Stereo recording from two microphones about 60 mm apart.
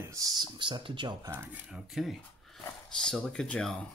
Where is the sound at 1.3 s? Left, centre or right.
Right.